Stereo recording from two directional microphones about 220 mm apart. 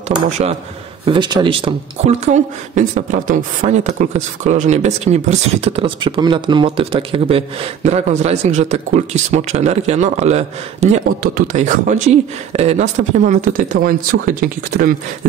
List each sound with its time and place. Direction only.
0.1 s speech: 30° right (ahead or behind)